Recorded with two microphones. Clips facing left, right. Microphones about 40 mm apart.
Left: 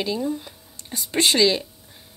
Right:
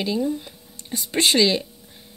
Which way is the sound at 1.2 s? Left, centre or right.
Centre.